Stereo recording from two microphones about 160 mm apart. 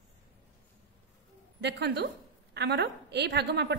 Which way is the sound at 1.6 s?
90° right.